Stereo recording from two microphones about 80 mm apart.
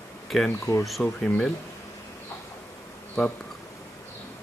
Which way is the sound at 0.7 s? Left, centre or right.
Left.